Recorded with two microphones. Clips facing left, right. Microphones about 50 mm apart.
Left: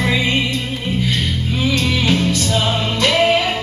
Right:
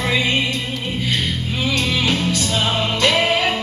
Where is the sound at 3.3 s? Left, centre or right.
Right.